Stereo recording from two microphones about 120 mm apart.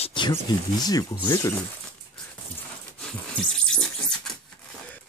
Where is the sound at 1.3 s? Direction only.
20° left (ahead or behind).